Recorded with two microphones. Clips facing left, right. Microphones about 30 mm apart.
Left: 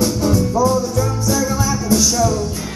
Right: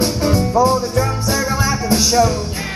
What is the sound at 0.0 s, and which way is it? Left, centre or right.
Music, right.